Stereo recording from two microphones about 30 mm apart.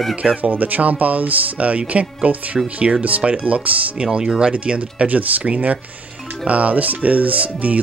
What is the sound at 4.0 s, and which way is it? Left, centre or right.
Speech, right.